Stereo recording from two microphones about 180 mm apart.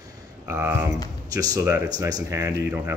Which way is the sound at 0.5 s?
15° right (ahead or behind).